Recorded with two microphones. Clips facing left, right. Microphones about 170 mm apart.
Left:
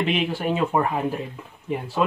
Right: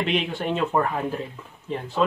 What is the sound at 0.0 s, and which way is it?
Speech, 5° left (ahead or behind).